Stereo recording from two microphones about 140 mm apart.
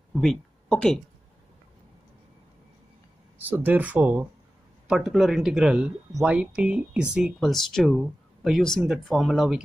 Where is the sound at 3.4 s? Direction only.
10° right (ahead or behind).